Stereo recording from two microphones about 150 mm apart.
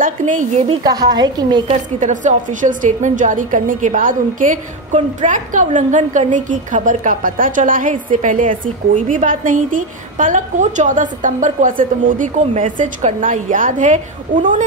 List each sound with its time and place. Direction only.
0.0 s a woman's voice: 60° right (ahead or behind)
0.8 s a woman's voice: 25° right (ahead or behind)
1.7 s a woman's voice: 55° right (ahead or behind)